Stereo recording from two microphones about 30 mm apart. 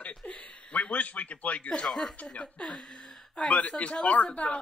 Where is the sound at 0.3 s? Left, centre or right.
Left.